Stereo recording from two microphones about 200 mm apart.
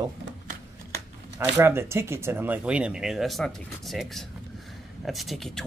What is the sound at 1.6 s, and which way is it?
Speech, 10° right (ahead or behind).